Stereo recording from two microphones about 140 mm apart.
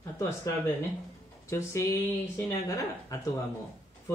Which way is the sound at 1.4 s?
20° left (ahead or behind).